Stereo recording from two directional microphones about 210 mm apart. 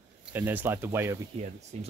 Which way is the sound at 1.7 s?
30° right (ahead or behind).